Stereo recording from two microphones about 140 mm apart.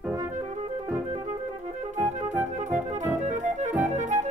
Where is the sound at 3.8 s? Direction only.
60° right (ahead or behind).